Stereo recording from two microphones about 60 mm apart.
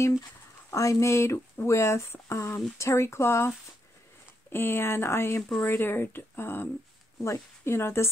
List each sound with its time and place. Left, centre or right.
0.7 s speech: left